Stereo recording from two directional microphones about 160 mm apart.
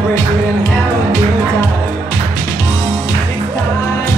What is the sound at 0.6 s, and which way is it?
Music, 20° left (ahead or behind).